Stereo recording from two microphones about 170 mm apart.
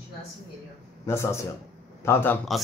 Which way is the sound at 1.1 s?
15° left (ahead or behind).